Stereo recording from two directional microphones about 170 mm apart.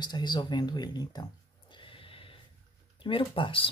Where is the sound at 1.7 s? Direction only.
30° left (ahead or behind).